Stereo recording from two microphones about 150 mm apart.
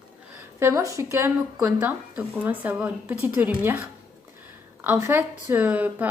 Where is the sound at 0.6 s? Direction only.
20° right (ahead or behind).